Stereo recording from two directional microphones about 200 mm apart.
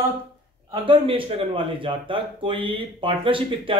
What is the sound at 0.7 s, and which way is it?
Speech, 25° right (ahead or behind).